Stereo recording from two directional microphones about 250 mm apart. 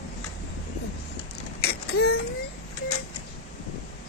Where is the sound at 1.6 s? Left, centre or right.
Left.